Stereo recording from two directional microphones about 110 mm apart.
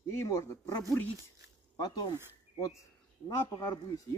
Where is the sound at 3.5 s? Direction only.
35° left (ahead or behind).